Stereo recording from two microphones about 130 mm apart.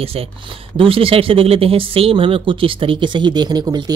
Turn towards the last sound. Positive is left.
turn(degrees=-30)  # may be behind; listen again after turning